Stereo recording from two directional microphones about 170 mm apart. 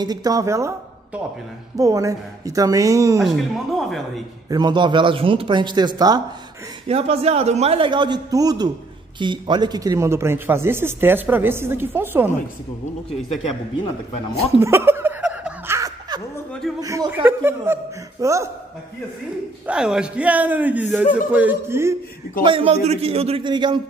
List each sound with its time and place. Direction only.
0.0 s a woman's voice: 20° right (ahead or behind)
3.2 s speech: centre (ahead or behind)
4.5 s speech: 25° right (ahead or behind)
6.9 s a man's voice: 35° right (ahead or behind); by 12.3 s 15° right (ahead or behind)
14.4 s snicker: 15° right (ahead or behind)
16.8 s a man's voice: 20° right (ahead or behind)
19.6 s a man's voice: 5° right (ahead or behind)
22.4 s a man's voice: 30° right (ahead or behind)